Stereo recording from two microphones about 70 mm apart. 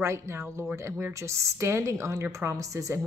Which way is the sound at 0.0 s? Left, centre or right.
Right.